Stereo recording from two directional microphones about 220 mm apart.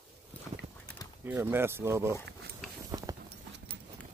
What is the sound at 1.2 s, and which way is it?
Speech, 10° right (ahead or behind).